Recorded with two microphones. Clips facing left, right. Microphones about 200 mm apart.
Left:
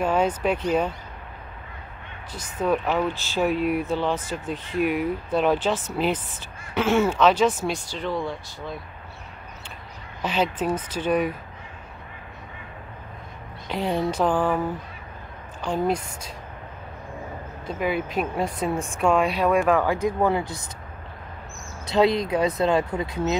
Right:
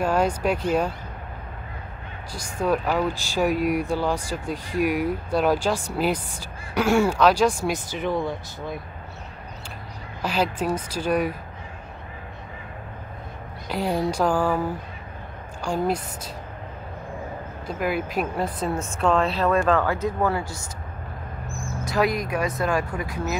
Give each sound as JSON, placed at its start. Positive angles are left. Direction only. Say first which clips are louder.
{"t": 0.0, "sound": "speech", "louder": "even", "side_deg": -10}
{"t": 2.6, "sound": "speech", "louder": "even", "side_deg": -10}
{"t": 10.2, "sound": "speech", "louder": "even", "side_deg": -10}
{"t": 13.7, "sound": "speech", "louder": "even", "side_deg": -5}
{"t": 15.6, "sound": "speech", "louder": "even", "side_deg": -10}
{"t": 17.6, "sound": "speech", "louder": "even", "side_deg": -5}
{"t": 18.6, "sound": "speech", "louder": "left 1 dB", "side_deg": 15}
{"t": 21.9, "sound": "speech", "louder": "left 3 dB", "side_deg": 25}